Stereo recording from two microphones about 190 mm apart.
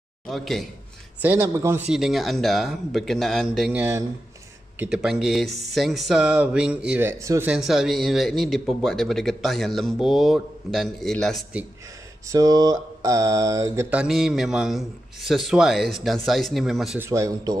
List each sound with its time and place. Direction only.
0.3 s speech: centre (ahead or behind)
1.2 s speech: 10° right (ahead or behind)
1.9 s speech: centre (ahead or behind)
12.3 s speech: 20° right (ahead or behind); by 17.1 s 5° right (ahead or behind)
17.1 s speech: 15° right (ahead or behind)